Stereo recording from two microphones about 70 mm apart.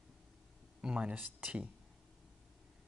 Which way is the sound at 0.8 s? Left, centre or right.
Centre.